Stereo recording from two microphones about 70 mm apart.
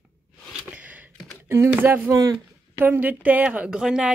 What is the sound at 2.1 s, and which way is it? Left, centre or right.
Speech, right.